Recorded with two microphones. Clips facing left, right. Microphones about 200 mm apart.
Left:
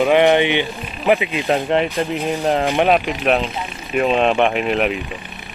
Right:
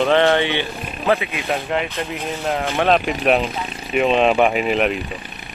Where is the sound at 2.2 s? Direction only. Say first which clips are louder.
Left 4 dB; 15° left (ahead or behind).